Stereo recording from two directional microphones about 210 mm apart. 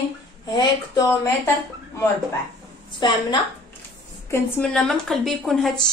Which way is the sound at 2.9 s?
20° left (ahead or behind).